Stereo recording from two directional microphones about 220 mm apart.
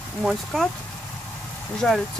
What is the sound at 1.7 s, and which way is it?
Speech, centre (ahead or behind).